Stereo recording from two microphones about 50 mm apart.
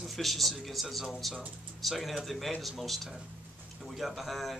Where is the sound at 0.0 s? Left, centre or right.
Centre.